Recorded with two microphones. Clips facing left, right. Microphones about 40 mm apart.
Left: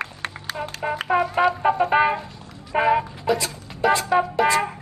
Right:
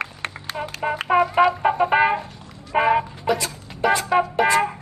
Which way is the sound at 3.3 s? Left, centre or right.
Right.